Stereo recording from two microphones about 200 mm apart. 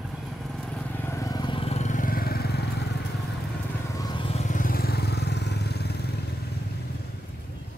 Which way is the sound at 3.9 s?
20° left (ahead or behind).